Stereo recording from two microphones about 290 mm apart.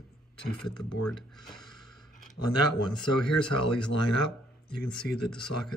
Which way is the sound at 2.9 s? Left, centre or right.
Centre.